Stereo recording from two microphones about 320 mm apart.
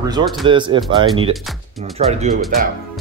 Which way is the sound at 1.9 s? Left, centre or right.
Right.